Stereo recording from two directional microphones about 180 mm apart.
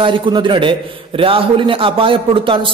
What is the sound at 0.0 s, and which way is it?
A man's voice, 25° right (ahead or behind).